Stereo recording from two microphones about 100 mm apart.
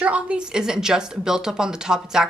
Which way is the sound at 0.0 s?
15° right (ahead or behind).